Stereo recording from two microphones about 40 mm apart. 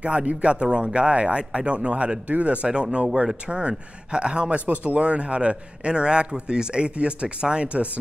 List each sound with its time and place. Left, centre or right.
0.0 s speech: right